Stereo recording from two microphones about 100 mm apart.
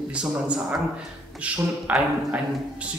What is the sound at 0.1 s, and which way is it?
A man's voice, 10° right (ahead or behind).